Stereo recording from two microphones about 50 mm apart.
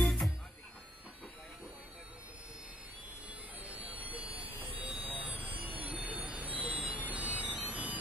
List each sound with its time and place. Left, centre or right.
0.0 s music: centre
3.5 s vehicle: right
5.6 s music: right
6.2 s vehicle: right
7.6 s a sound: right